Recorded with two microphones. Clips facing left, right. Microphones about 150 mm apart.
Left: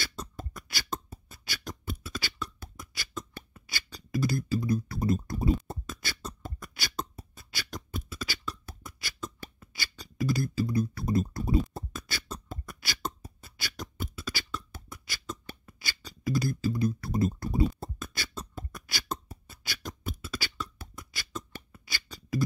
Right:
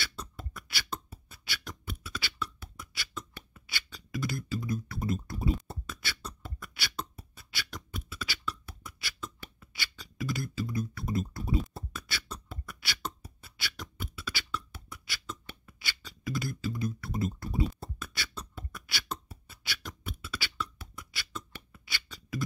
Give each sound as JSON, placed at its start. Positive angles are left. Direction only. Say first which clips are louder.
{"t": 0.0, "sound": "beatboxing", "louder": "left 3 dB", "side_deg": 40}